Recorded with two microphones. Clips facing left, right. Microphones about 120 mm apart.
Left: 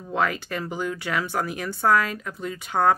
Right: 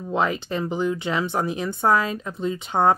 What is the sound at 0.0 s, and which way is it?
Speech, 20° right (ahead or behind).